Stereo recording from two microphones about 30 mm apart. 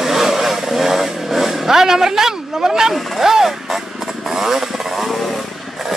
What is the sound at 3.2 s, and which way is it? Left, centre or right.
Music, centre.